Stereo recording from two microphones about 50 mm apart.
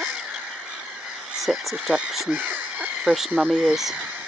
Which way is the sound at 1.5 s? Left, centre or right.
Centre.